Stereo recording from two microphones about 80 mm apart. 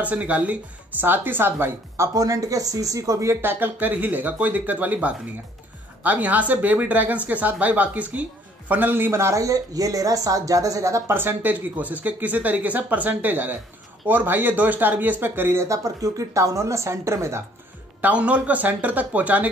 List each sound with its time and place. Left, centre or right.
0.0 s speech: centre
2.1 s speech: right
11.1 s speech: right
15.6 s speech: right
18.0 s speech: centre